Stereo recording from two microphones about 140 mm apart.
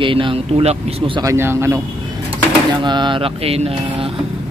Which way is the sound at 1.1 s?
20° right (ahead or behind).